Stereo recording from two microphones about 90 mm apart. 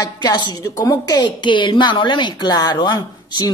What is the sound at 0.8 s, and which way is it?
Speech, 40° left (ahead or behind).